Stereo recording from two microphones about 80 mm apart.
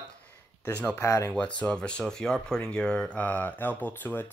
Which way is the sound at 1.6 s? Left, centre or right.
Centre.